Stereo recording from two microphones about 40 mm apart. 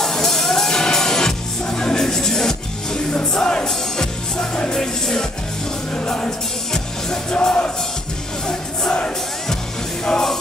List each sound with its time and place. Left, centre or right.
0.0 s music: centre